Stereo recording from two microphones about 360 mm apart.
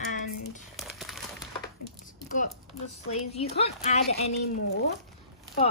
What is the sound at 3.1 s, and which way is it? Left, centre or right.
A woman's voice, centre.